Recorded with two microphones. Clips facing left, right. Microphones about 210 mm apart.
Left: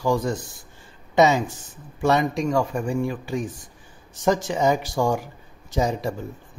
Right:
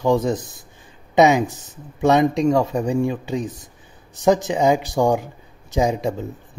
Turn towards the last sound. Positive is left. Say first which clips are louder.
# right 4 dB
turn(degrees=-20)  # may be behind; listen again after turning